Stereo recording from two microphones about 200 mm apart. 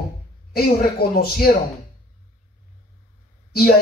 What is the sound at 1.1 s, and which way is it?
Speech, 50° left (ahead or behind).